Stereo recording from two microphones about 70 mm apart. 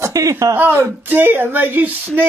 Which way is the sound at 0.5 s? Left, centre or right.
Right.